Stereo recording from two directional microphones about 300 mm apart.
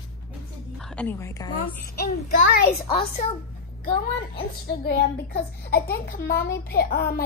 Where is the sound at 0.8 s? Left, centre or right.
Centre.